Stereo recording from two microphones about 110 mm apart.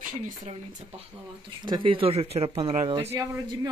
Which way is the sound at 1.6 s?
45° right (ahead or behind).